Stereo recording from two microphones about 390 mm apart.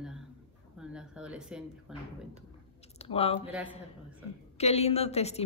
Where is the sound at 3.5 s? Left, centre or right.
Centre.